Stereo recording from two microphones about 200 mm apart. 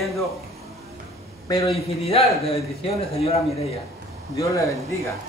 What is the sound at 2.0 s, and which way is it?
Speech, 30° left (ahead or behind).